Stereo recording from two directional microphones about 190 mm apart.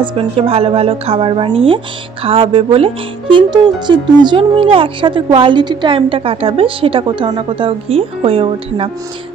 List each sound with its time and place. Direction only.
0.0 s a woman's voice: 30° right (ahead or behind)